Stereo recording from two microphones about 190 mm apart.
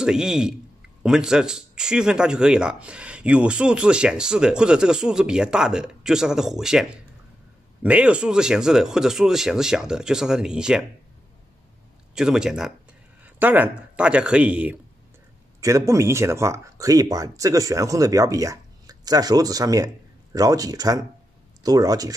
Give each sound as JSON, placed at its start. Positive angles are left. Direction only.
{"t": 0.0, "sound": "speech", "side_deg": -5}
{"t": 12.2, "sound": "speech", "side_deg": -5}